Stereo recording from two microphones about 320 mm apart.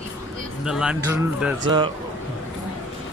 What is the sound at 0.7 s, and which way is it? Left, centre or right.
Speech, centre.